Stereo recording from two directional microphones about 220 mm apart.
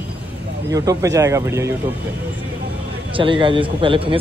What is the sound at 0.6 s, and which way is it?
Speech, 15° right (ahead or behind).